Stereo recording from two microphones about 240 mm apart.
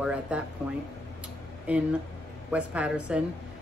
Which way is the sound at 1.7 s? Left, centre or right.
Centre.